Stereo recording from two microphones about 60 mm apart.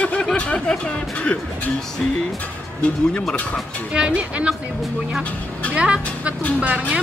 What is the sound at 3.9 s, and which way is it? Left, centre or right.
Speech, centre.